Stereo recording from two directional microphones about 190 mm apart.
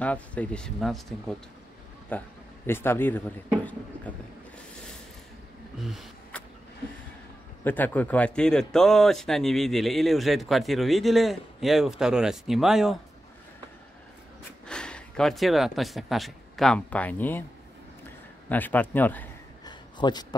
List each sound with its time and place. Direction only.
0.0 s a man's voice: 5° left (ahead or behind)
5.8 s a sound: centre (ahead or behind)
7.6 s a man's voice: 10° left (ahead or behind)
14.7 s speech: 5° left (ahead or behind)
18.5 s a man's voice: 10° left (ahead or behind)
19.6 s a sound: 20° left (ahead or behind)